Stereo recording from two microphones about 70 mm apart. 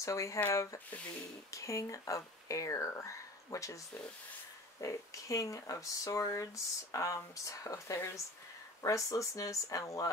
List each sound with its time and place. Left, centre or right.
0.0 s speech: left
1.5 s speech: left